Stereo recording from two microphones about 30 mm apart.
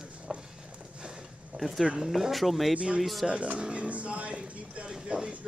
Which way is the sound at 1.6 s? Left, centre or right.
Centre.